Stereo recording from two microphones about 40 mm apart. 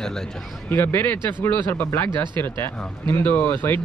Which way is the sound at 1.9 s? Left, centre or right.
Left.